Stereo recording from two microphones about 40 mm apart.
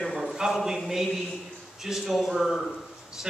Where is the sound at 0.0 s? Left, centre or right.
Centre.